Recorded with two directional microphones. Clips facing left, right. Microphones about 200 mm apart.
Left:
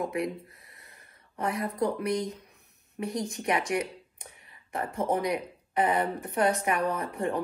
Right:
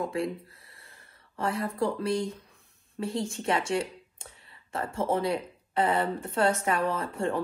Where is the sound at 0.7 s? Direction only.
20° left (ahead or behind).